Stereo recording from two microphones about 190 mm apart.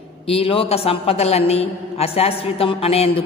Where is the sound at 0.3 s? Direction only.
30° left (ahead or behind).